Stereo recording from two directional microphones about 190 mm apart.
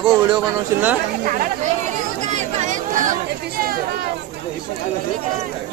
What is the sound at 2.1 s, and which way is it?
Chatter, 40° right (ahead or behind).